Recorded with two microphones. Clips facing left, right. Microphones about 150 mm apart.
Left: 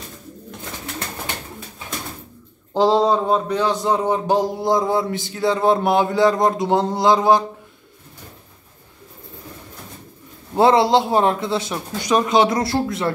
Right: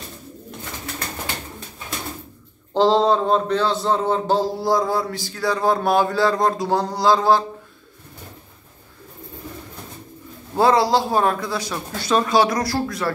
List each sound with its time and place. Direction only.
2.7 s a man's voice: 10° left (ahead or behind)
10.5 s a man's voice: 20° left (ahead or behind)